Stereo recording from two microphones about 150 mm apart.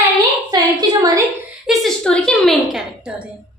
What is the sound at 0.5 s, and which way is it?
Speech, 25° right (ahead or behind).